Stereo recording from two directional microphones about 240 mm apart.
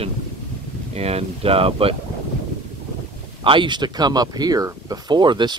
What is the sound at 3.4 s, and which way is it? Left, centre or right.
Speech, right.